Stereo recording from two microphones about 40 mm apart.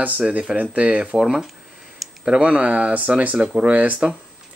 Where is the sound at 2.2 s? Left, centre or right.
Right.